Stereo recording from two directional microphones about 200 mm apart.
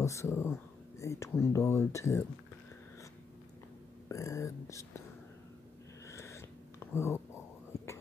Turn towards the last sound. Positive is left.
turn(degrees=15)  # may be behind; listen again after turning